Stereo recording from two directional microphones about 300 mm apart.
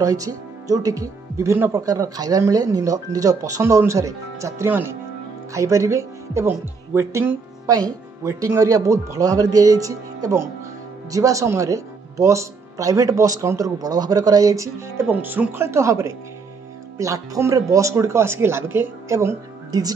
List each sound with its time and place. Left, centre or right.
0.0 s speech: centre